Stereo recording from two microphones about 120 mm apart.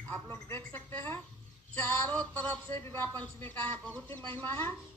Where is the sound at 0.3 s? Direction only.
15° left (ahead or behind).